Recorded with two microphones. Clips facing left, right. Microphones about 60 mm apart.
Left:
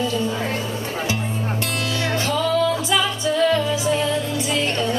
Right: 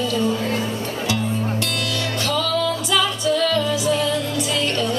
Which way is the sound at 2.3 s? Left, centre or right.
Left.